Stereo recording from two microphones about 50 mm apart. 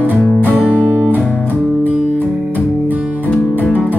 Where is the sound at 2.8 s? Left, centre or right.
Right.